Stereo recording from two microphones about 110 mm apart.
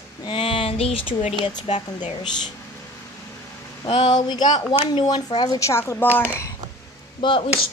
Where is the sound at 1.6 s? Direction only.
90° left.